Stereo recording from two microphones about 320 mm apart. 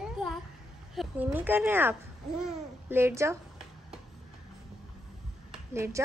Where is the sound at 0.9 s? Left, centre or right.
Centre.